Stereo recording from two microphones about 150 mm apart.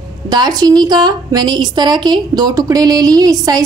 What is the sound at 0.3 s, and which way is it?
A woman's voice, 25° right (ahead or behind).